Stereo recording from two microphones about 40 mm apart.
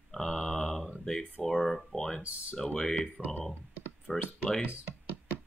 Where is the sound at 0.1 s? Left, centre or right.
Centre.